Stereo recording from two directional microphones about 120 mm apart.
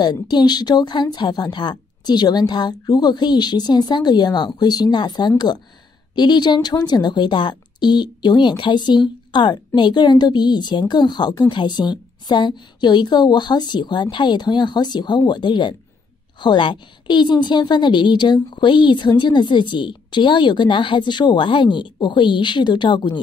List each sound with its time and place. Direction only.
0.0 s a woman's voice: 40° left (ahead or behind)